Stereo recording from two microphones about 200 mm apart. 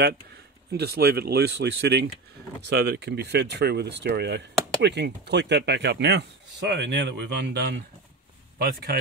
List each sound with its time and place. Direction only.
0.7 s speech: 50° right (ahead or behind)